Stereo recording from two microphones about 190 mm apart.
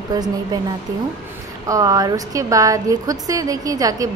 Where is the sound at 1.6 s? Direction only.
20° right (ahead or behind).